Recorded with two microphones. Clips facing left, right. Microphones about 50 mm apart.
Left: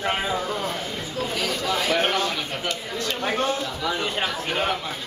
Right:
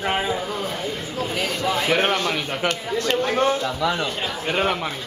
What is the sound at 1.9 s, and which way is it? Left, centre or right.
A man's voice, right.